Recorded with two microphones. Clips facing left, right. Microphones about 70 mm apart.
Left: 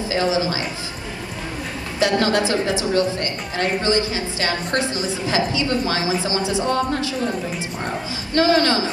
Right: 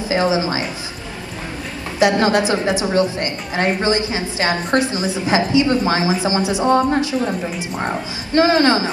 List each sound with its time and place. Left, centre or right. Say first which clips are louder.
0.1 s a woman's voice: right 3 dB; right
2.0 s a woman's voice: right 4 dB; right
8.4 s a woman's voice: right 3 dB; right